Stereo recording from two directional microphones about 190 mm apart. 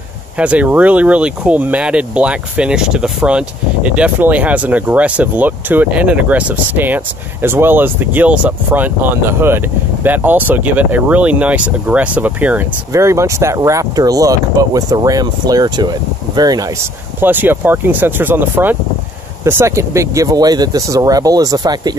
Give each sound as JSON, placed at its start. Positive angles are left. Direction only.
{"t": 0.4, "sound": "speech", "side_deg": -5}